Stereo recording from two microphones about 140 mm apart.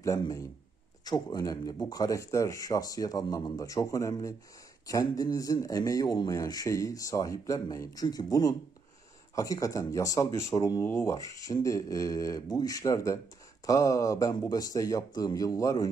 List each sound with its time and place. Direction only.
0.0 s speech: 25° left (ahead or behind)